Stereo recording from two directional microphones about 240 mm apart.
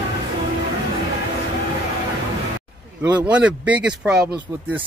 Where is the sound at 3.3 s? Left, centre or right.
Centre.